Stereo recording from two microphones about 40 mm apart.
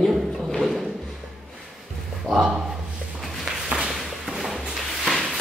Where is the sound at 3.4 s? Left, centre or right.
Right.